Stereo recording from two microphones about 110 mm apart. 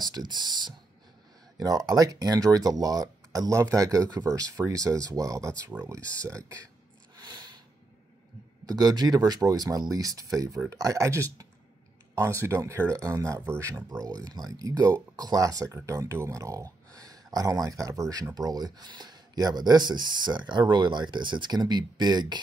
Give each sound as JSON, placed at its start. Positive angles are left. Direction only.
{"t": 0.1, "sound": "speech", "side_deg": -40}
{"t": 5.7, "sound": "speech", "side_deg": -15}
{"t": 7.2, "sound": "a sound", "side_deg": -45}
{"t": 8.6, "sound": "speech", "side_deg": -35}
{"t": 12.4, "sound": "speech", "side_deg": -25}